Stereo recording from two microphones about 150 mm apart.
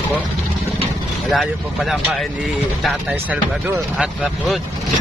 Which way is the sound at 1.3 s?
Centre (ahead or behind).